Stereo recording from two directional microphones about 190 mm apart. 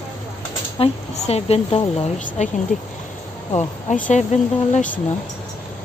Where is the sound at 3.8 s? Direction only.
40° left (ahead or behind).